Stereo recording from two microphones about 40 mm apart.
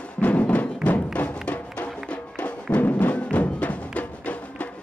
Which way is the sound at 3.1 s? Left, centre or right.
Left.